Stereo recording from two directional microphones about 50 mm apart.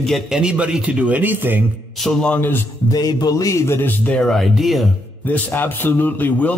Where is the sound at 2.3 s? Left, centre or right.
Left.